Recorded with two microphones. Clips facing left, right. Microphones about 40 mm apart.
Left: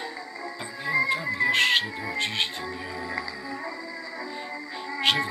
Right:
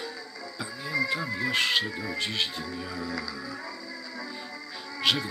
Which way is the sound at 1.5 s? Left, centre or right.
Left.